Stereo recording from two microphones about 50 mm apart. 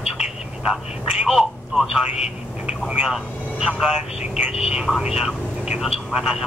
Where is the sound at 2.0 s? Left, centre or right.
Right.